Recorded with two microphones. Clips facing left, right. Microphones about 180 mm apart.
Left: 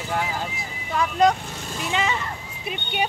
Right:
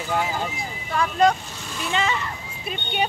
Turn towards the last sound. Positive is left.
turn(degrees=10)  # may be behind; listen again after turning